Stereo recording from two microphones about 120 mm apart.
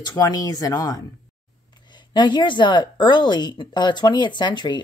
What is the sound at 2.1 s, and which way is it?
Speech, 40° left (ahead or behind).